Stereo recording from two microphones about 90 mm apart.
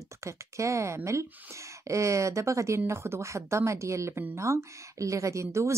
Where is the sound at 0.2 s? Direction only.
35° right (ahead or behind).